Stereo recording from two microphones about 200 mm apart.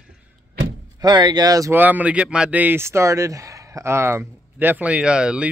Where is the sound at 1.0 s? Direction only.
20° right (ahead or behind).